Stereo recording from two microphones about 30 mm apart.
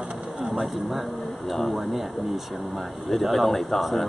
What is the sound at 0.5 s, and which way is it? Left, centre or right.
Speech, centre.